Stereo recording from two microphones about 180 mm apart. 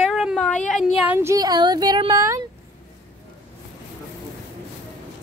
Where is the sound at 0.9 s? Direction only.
10° right (ahead or behind).